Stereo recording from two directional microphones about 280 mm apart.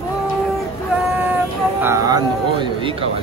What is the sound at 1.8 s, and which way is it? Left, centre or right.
A man's voice, centre.